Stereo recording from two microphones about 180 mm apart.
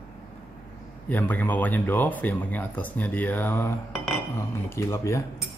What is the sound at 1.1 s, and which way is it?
Speech, 10° left (ahead or behind).